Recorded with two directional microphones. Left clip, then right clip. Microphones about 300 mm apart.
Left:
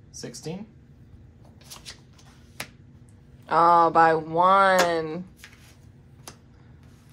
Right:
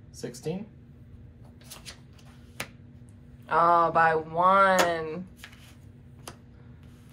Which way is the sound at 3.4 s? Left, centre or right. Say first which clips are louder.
Left 4 dB; left.